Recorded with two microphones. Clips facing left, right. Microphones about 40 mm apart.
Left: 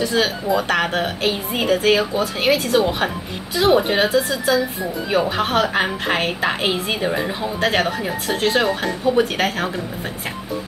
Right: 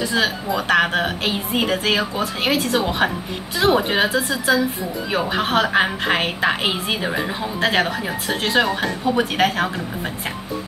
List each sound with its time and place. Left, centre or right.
0.0 s a woman's voice: centre